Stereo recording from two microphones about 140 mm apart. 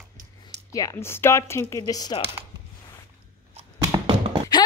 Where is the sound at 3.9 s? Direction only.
30° right (ahead or behind).